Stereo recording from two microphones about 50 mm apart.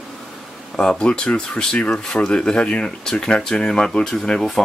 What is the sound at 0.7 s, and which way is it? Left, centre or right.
Speech, centre.